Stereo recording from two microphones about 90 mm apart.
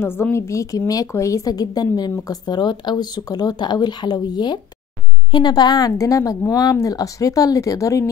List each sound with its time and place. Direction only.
0.0 s a woman's voice: 25° left (ahead or behind)